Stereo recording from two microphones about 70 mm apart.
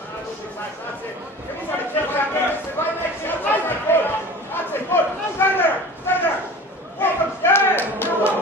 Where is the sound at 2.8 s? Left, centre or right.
Left.